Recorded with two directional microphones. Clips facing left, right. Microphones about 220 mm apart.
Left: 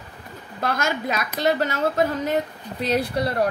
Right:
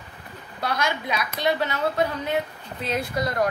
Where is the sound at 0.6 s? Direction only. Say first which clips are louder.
Left 2 dB; 45° left (ahead or behind).